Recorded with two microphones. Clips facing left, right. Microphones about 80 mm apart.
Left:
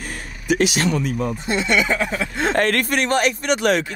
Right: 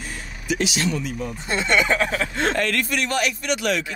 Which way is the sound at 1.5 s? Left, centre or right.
Right.